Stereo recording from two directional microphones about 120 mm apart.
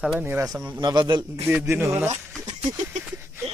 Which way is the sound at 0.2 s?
15° right (ahead or behind).